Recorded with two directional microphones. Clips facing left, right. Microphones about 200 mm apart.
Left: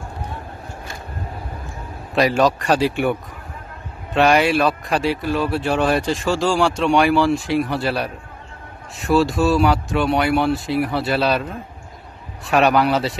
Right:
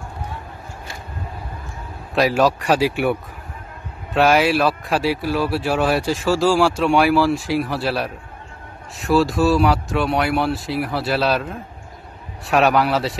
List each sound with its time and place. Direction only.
2.1 s speech: 5° right (ahead or behind)